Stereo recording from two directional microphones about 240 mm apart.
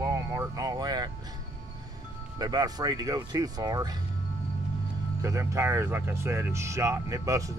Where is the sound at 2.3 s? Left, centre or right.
Centre.